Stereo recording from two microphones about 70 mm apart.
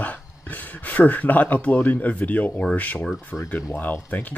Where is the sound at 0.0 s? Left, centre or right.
Left.